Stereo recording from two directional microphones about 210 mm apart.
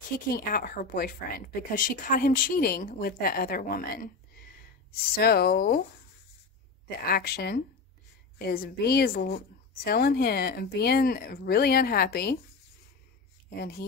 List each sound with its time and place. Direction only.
0.3 s a woman's voice: 45° left (ahead or behind)
5.1 s a woman's voice: 45° left (ahead or behind)
7.1 s a woman's voice: 45° left (ahead or behind)
13.6 s a woman's voice: 50° left (ahead or behind)